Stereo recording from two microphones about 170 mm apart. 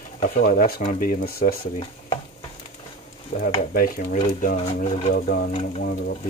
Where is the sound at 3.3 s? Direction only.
55° left (ahead or behind).